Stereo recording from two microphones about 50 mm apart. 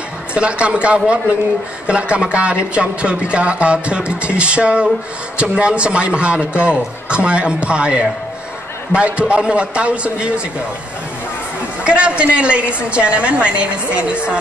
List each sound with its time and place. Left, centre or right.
0.3 s speech: right
11.8 s speech: right